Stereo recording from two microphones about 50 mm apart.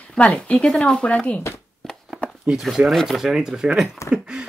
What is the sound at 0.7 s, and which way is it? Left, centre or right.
Speech, centre.